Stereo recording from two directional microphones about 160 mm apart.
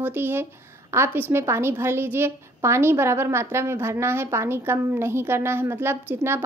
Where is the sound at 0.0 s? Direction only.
15° right (ahead or behind).